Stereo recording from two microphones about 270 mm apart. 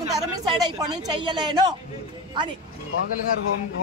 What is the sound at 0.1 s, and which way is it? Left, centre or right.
A woman's voice, centre.